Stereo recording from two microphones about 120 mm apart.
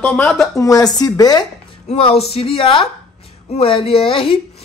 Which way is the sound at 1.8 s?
55° left (ahead or behind).